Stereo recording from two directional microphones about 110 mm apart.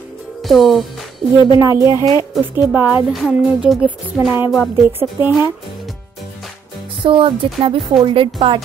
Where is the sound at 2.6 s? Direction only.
15° right (ahead or behind).